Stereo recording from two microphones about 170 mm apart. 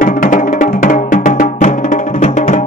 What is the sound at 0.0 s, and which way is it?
Music, 50° left (ahead or behind).